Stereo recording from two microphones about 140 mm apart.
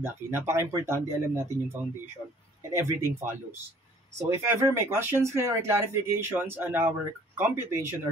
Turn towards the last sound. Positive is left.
turn(degrees=-20)  # may be behind; listen again after turning